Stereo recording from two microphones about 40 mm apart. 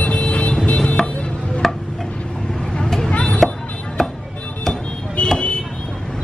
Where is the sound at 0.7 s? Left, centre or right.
Left.